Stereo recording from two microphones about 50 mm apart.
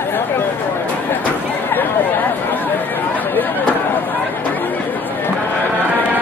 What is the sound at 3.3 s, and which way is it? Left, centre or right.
Chatter, left.